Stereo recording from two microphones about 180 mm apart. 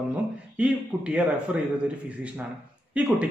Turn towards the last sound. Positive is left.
turn(degrees=-5)  # may be behind; listen again after turning